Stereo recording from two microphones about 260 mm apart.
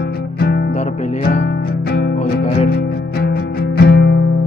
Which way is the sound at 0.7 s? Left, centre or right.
Left.